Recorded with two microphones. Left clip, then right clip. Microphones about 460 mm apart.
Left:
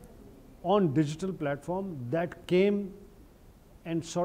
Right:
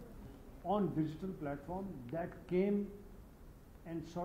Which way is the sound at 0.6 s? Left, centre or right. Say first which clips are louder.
Left 10 dB; left.